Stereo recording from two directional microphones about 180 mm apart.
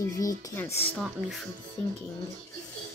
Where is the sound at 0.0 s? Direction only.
20° left (ahead or behind).